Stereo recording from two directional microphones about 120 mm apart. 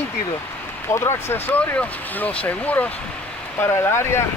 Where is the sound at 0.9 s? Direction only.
20° left (ahead or behind).